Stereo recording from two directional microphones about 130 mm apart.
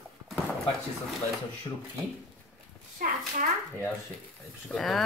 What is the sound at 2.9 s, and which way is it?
Speech, 90° right.